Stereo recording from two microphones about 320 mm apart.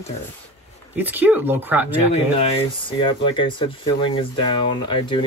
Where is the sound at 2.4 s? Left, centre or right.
Centre.